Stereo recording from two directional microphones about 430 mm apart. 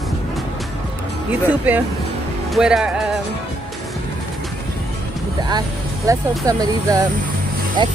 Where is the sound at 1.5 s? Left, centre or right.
Centre.